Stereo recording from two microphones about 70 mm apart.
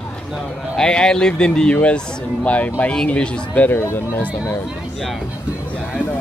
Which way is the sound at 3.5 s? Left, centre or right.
Left.